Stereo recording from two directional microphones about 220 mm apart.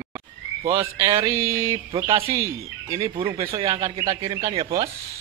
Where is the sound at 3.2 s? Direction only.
25° right (ahead or behind).